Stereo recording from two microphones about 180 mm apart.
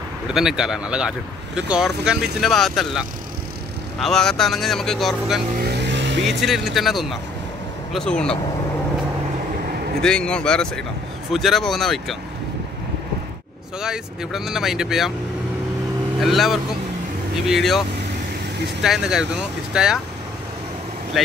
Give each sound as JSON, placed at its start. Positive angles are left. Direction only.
{"t": 0.3, "sound": "speech", "side_deg": -5}
{"t": 5.5, "sound": "vehicle", "side_deg": -60}
{"t": 6.2, "sound": "speech", "side_deg": 0}
{"t": 10.0, "sound": "speech", "side_deg": 5}
{"t": 13.7, "sound": "speech", "side_deg": -5}
{"t": 16.2, "sound": "speech", "side_deg": 0}